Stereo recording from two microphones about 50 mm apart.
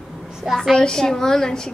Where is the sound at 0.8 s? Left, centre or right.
Centre.